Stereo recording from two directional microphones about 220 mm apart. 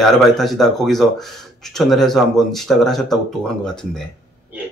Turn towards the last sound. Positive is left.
turn(degrees=5)  # may be behind; listen again after turning